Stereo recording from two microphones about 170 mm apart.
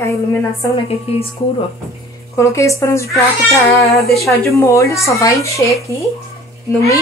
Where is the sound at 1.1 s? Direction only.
35° left (ahead or behind).